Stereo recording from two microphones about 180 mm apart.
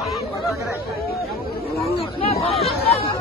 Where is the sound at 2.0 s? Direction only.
35° left (ahead or behind).